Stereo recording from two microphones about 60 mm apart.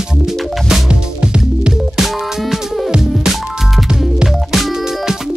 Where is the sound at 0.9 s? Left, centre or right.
Centre.